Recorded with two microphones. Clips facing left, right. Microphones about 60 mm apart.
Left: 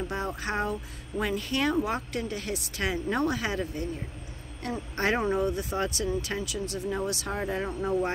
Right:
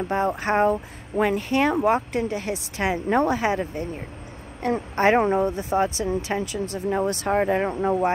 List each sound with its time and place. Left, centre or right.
0.1 s speech: right
6.9 s speech: right